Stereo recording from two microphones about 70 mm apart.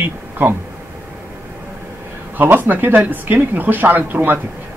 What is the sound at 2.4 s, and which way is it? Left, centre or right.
A man's voice, right.